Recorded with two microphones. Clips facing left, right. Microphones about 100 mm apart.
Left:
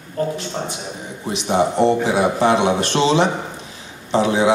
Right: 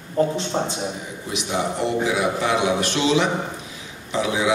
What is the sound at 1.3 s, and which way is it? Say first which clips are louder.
A man's voice: left 7 dB; 35° left (ahead or behind).